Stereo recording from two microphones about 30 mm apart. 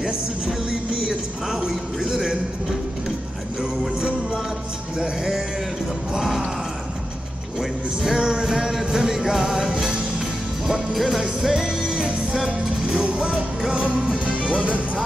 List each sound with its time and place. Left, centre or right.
0.7 s music: right
8.0 s music: right
10.7 s music: centre
12.4 s music: right